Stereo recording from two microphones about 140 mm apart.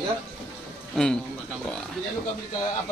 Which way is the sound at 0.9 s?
5° left (ahead or behind).